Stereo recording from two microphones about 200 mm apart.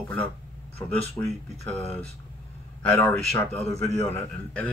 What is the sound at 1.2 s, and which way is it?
Speech, 20° left (ahead or behind).